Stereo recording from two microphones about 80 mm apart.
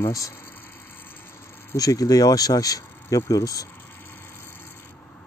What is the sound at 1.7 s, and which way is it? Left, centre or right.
Speech, left.